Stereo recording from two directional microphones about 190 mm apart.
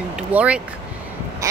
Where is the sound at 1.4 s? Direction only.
15° right (ahead or behind).